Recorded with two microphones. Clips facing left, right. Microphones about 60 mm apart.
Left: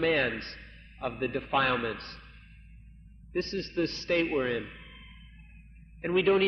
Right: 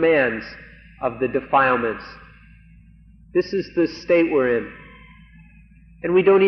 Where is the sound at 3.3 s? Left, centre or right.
Right.